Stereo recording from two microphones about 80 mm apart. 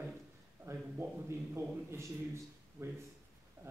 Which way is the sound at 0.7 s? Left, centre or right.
Right.